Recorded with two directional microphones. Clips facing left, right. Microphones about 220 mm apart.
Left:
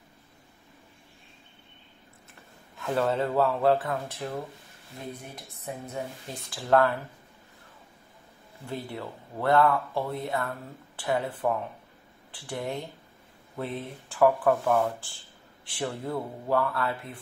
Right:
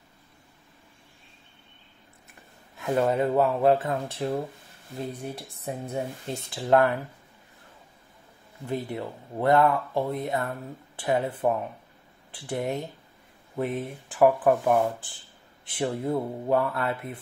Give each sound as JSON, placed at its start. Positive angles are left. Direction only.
{"t": 2.8, "sound": "speech", "side_deg": -15}
{"t": 8.6, "sound": "speech", "side_deg": -20}